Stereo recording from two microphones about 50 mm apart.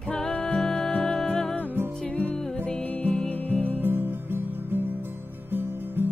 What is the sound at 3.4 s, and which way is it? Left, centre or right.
Music, left.